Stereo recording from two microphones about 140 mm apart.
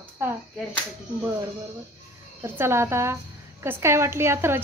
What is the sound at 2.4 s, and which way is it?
A woman's voice, 20° right (ahead or behind).